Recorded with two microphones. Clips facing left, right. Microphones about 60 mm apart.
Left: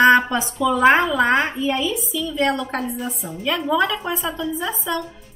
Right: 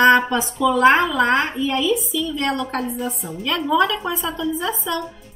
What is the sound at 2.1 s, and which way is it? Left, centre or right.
Speech, centre.